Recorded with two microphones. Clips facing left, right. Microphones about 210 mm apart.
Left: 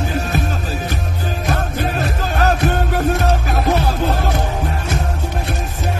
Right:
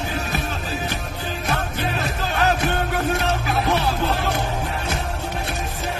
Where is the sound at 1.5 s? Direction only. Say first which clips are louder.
Left 4 dB; 45° left (ahead or behind).